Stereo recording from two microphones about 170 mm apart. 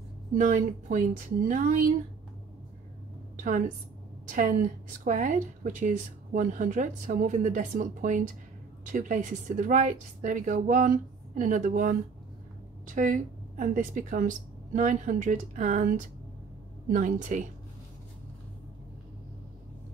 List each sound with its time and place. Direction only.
0.4 s a woman's voice: 50° right (ahead or behind)
4.3 s a woman's voice: 50° right (ahead or behind)